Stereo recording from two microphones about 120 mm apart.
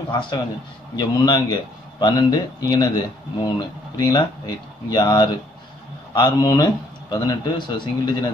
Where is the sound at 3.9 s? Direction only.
35° left (ahead or behind).